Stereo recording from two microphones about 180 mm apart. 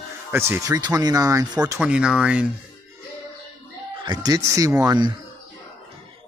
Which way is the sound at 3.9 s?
25° right (ahead or behind).